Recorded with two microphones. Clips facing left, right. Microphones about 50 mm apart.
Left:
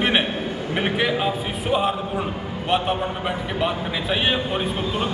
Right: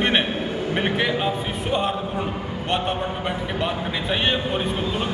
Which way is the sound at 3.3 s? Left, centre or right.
Centre.